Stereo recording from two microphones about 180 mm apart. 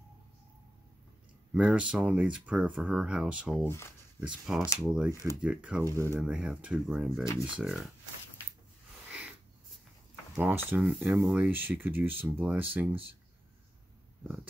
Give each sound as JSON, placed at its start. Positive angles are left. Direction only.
{"t": 1.5, "sound": "speech", "side_deg": -5}
{"t": 3.6, "sound": "speech", "side_deg": 15}
{"t": 4.7, "sound": "speech", "side_deg": -5}
{"t": 5.1, "sound": "speech", "side_deg": 15}
{"t": 5.4, "sound": "speech", "side_deg": -5}
{"t": 6.2, "sound": "speech", "side_deg": -5}
{"t": 7.2, "sound": "speech", "side_deg": 15}
{"t": 7.5, "sound": "speech", "side_deg": 0}
{"t": 10.3, "sound": "speech", "side_deg": -10}